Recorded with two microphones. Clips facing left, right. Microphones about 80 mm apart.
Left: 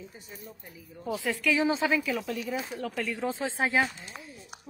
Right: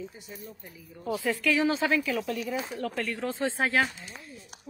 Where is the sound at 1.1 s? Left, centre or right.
Centre.